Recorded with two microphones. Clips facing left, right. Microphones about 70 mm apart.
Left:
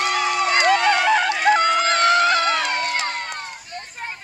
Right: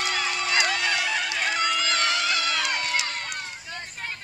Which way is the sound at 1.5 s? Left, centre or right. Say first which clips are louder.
Left 10 dB; left.